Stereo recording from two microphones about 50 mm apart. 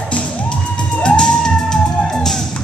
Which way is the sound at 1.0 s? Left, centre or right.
Centre.